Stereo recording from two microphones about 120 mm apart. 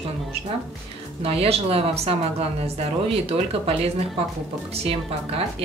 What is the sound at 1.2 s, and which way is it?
A woman's voice, 55° right (ahead or behind).